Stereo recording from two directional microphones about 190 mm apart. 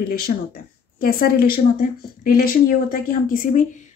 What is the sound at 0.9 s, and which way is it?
Speech, 50° left (ahead or behind).